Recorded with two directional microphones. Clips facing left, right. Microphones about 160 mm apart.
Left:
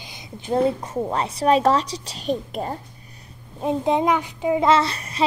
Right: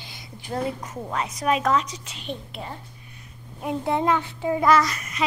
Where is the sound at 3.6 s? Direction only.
20° left (ahead or behind).